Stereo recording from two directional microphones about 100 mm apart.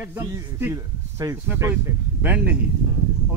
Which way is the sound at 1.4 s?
20° right (ahead or behind).